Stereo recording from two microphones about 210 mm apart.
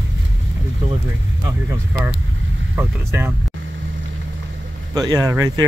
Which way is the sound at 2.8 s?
10° right (ahead or behind).